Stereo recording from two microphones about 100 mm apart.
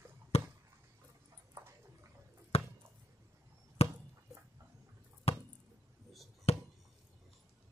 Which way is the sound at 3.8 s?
90° left.